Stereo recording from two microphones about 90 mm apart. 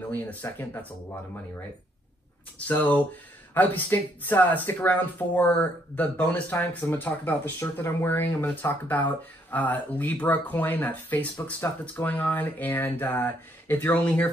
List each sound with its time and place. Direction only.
0.1 s speech: 20° left (ahead or behind)
2.7 s speech: 20° left (ahead or behind)